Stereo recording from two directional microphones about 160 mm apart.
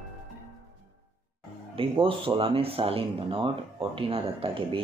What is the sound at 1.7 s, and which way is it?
Speech, 35° right (ahead or behind).